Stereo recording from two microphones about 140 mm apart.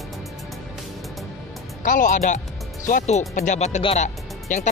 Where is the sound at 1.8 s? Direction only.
65° left (ahead or behind).